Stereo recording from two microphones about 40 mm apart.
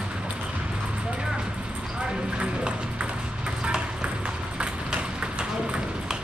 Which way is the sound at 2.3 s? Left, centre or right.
Right.